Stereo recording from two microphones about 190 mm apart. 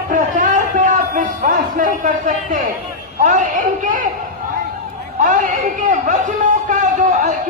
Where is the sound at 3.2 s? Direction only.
40° right (ahead or behind).